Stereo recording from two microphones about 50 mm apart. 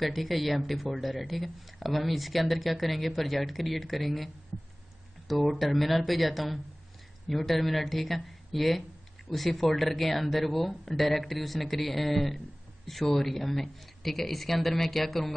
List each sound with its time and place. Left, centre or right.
0.0 s speech: centre
5.3 s speech: centre